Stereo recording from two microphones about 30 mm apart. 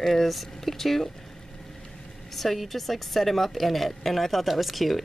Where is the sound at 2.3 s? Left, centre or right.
Centre.